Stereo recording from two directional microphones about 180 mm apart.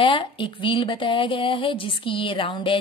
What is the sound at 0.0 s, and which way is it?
A woman's voice, 30° left (ahead or behind).